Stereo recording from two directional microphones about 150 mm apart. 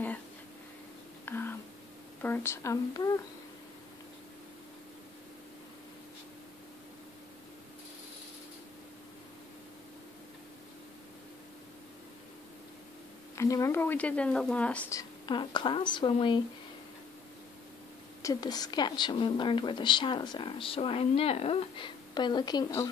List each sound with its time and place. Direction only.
1.2 s whispering: 15° left (ahead or behind)
2.2 s speech: 15° left (ahead or behind)
13.4 s speech: 20° left (ahead or behind)
14.9 s a woman's voice: 25° left (ahead or behind)
18.2 s a woman's voice: 25° left (ahead or behind)